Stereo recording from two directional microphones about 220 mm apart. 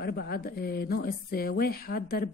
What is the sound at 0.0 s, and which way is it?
A woman's voice, 45° left (ahead or behind).